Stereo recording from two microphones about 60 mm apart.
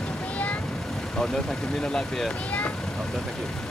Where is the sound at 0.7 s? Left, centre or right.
Centre.